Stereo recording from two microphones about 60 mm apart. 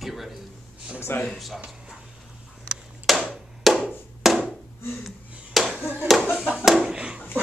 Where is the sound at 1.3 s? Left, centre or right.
Centre.